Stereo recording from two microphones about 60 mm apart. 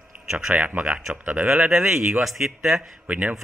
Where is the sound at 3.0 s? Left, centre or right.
Right.